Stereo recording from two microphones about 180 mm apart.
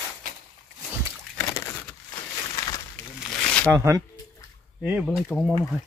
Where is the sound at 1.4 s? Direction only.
15° left (ahead or behind).